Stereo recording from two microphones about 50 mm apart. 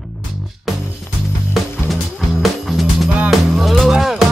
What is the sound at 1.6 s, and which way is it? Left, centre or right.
Music, centre.